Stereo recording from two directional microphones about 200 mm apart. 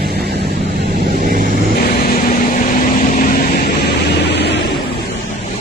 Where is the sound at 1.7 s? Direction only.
45° left (ahead or behind).